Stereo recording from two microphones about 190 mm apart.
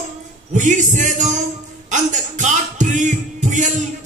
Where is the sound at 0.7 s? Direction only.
40° right (ahead or behind).